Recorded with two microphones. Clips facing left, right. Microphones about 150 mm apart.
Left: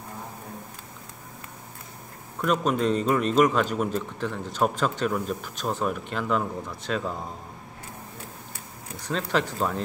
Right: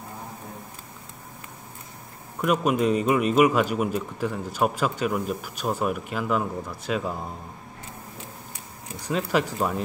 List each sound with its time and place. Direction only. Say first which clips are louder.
2.4 s speech: right 2 dB; 10° right (ahead or behind)
9.0 s speech: right 2 dB; 10° right (ahead or behind)